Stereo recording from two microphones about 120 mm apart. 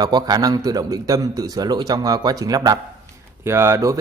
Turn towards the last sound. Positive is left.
turn(degrees=-25)  # may be behind; listen again after turning